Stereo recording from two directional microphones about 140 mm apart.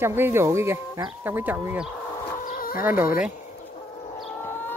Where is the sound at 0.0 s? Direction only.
15° right (ahead or behind).